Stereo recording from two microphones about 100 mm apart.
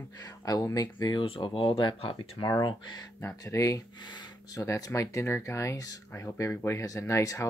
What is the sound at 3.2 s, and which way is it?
Speech, 30° left (ahead or behind).